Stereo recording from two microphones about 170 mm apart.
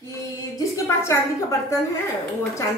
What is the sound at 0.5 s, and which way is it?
Speech, 15° left (ahead or behind).